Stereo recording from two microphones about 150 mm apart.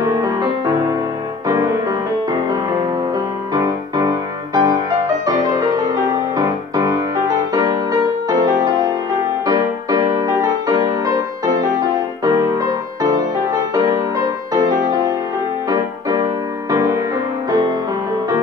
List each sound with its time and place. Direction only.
0.0 s music: 20° right (ahead or behind)
3.5 s music: 25° right (ahead or behind)
5.9 s music: 25° right (ahead or behind)
12.3 s music: 20° right (ahead or behind)
14.5 s music: 25° right (ahead or behind)